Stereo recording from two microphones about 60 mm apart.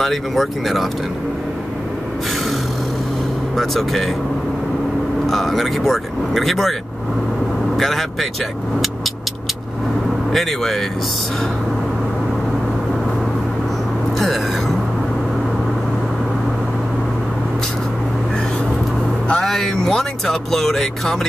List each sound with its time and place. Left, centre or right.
0.0 s speech: centre
3.5 s speech: centre
5.2 s speech: centre
7.7 s speech: centre
10.3 s speech: centre
14.1 s a sound: centre
19.4 s speech: centre